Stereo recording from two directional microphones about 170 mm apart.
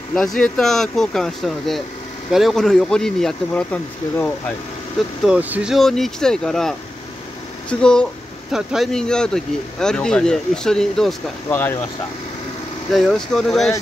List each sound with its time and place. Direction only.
0.1 s speech: centre (ahead or behind)
5.2 s speech: 5° right (ahead or behind)
7.8 s speech: 5° left (ahead or behind)
12.9 s speech: centre (ahead or behind)